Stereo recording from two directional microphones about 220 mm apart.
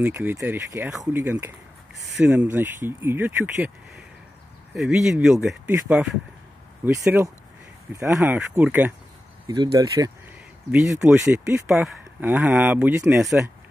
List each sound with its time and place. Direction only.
0.0 s speech: 10° right (ahead or behind)
10.7 s speech: 5° right (ahead or behind)